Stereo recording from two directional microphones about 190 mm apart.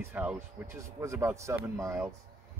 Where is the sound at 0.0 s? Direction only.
10° right (ahead or behind).